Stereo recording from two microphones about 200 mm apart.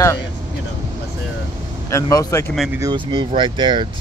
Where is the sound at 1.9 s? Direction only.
15° left (ahead or behind).